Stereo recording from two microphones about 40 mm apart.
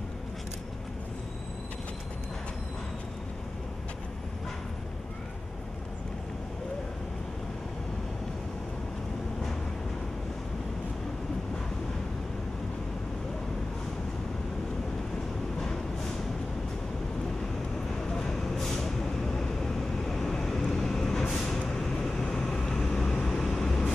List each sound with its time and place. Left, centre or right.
18.0 s vehicle: centre